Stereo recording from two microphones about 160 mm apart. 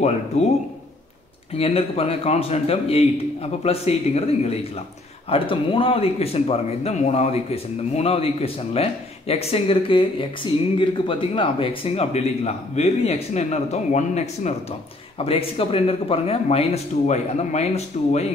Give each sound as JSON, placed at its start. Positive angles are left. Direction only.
{"t": 0.3, "sound": "a man's voice", "side_deg": 45}
{"t": 1.6, "sound": "speech", "side_deg": 35}